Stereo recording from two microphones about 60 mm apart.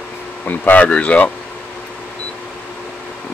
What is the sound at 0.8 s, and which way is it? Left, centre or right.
Speech, left.